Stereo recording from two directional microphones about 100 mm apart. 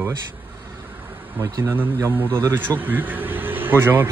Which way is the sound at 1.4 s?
30° right (ahead or behind).